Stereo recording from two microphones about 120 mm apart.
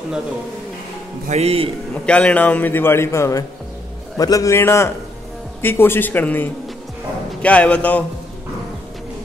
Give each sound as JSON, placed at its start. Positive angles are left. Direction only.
{"t": 1.3, "sound": "a man's voice", "side_deg": -55}
{"t": 2.0, "sound": "a man's voice", "side_deg": 10}